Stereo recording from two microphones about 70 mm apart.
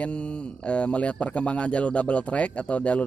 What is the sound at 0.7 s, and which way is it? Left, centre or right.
Speech, centre.